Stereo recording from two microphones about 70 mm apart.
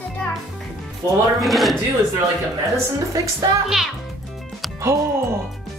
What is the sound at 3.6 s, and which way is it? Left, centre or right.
Speech, centre.